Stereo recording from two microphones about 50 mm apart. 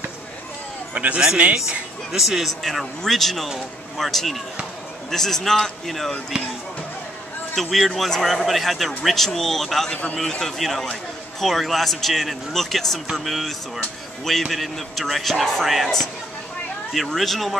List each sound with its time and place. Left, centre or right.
0.9 s a man's voice: right
2.1 s a man's voice: centre
7.5 s a man's voice: centre